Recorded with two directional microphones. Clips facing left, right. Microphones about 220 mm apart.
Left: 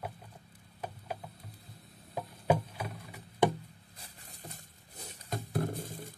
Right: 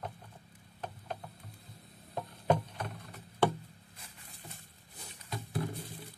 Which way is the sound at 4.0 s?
40° left (ahead or behind).